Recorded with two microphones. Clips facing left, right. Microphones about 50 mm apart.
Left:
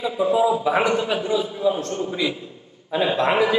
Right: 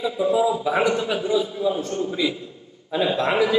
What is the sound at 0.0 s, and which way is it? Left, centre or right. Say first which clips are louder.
A man's voice: left 1 dB; centre.